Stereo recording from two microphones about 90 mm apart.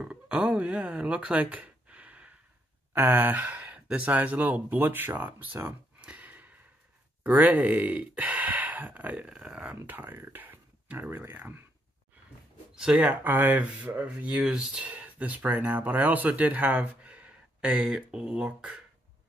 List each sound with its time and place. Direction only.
0.0 s speech: 10° right (ahead or behind)
5.9 s gasp: 15° right (ahead or behind)
7.2 s speech: 20° right (ahead or behind)
9.3 s speech: 5° right (ahead or behind)
9.8 s speech: 20° right (ahead or behind)
12.7 s speech: 10° right (ahead or behind)